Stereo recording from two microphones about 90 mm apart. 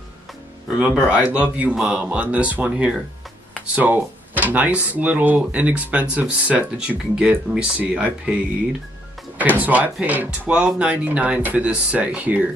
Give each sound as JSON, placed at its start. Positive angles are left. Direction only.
{"t": 0.7, "sound": "speech", "side_deg": -15}
{"t": 9.6, "sound": "speech", "side_deg": -15}